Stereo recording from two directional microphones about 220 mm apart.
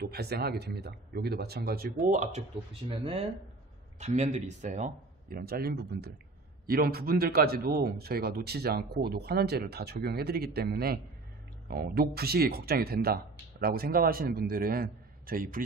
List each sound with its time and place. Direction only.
0.0 s a man's voice: 45° right (ahead or behind)
2.9 s a man's voice: 25° right (ahead or behind); by 15.6 s 40° right (ahead or behind)